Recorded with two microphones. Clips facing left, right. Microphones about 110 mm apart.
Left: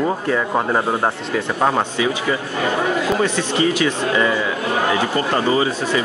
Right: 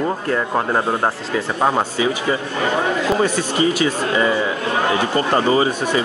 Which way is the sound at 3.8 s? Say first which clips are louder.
Even; 25° right (ahead or behind).